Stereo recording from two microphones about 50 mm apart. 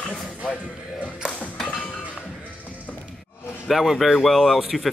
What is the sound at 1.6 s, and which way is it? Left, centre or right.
Music, left.